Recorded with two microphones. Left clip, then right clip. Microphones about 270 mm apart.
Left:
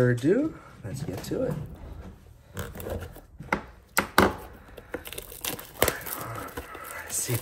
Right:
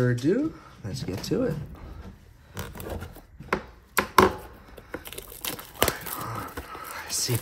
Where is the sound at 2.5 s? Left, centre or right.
Centre.